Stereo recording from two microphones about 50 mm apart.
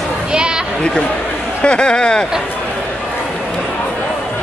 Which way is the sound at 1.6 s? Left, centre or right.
Centre.